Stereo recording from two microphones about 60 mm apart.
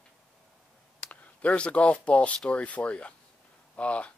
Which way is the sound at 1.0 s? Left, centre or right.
Left.